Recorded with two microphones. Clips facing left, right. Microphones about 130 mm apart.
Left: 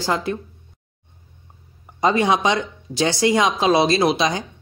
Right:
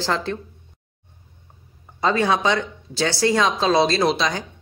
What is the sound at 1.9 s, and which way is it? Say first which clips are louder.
Speech: left 2 dB; 15° left (ahead or behind).